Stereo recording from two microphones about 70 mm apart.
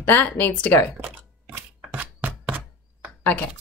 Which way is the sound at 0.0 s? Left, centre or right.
Left.